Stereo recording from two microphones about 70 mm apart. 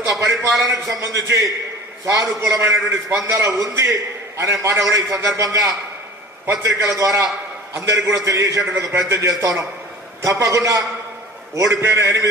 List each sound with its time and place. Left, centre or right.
0.0 s a man's voice: right
3.3 s a man's voice: right
8.9 s a man's voice: right
9.4 s a man's voice: right